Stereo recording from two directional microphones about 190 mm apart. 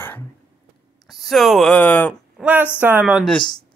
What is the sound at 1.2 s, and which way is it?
Speech, centre (ahead or behind).